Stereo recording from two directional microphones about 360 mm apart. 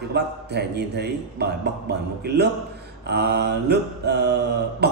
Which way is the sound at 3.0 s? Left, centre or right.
Right.